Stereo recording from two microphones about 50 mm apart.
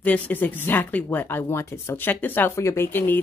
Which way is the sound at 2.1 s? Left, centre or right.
Left.